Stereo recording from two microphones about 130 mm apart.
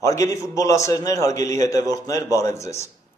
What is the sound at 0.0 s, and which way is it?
A man's voice, 25° left (ahead or behind).